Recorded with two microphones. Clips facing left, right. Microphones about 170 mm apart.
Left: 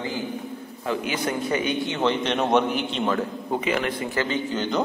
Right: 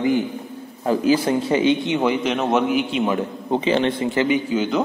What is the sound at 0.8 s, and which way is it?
A man's voice, 35° right (ahead or behind).